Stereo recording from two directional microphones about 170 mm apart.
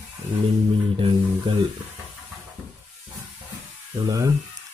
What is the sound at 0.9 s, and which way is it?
Music, 30° right (ahead or behind).